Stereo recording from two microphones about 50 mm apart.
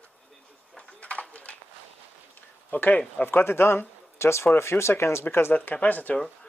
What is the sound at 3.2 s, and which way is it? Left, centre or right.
Speech, left.